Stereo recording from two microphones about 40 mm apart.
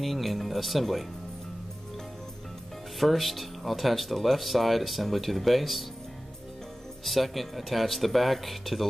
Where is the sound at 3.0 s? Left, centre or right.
Centre.